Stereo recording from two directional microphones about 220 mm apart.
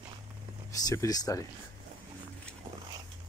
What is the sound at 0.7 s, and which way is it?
Speech, 15° left (ahead or behind).